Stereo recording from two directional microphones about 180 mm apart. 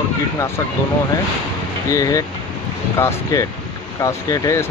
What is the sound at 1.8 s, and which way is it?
Speech, 15° left (ahead or behind).